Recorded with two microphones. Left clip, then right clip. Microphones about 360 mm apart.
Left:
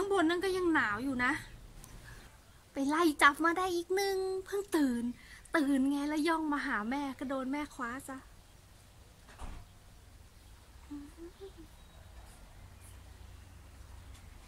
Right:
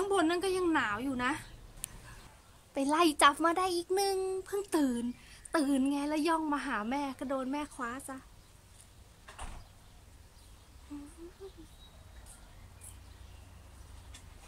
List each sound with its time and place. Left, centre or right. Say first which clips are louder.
0.0 s a woman's voice: right 1 dB; centre
2.7 s a woman's voice: right 2 dB; centre